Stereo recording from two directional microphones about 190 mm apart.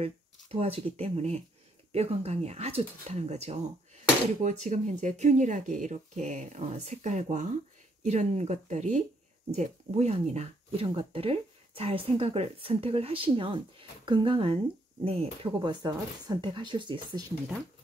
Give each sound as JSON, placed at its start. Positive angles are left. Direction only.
{"t": 0.0, "sound": "speech", "side_deg": -30}